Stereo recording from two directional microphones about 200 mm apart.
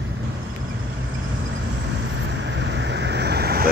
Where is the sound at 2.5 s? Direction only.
60° right (ahead or behind).